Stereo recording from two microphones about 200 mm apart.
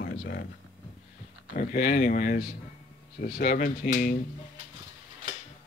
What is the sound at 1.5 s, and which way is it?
Speech, 45° left (ahead or behind).